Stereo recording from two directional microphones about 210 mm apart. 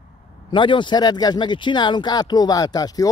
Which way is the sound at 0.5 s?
20° left (ahead or behind).